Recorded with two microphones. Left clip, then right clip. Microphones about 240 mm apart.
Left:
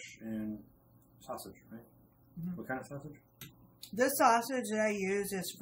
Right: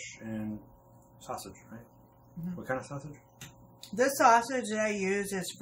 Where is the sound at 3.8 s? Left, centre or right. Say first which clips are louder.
Right 3 dB; centre.